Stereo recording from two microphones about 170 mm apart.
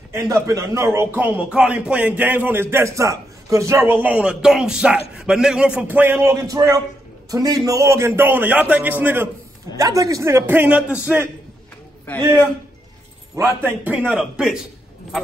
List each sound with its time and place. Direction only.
0.1 s a man's voice: 20° right (ahead or behind)
12.2 s a man's voice: 25° right (ahead or behind)
13.4 s a man's voice: 15° right (ahead or behind)